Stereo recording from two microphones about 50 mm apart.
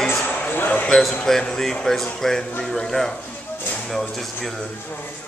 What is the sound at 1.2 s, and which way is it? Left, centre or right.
A woman's voice, centre.